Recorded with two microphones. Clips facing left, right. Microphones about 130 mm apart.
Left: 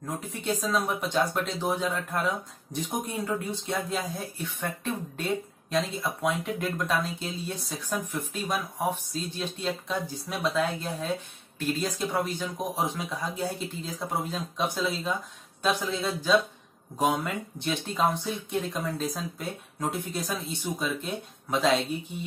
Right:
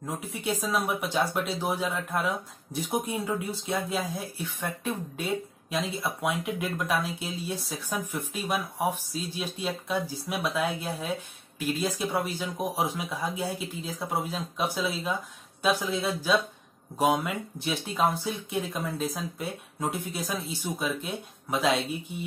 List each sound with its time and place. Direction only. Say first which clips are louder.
0.0 s speech: right 1 dB; 5° right (ahead or behind)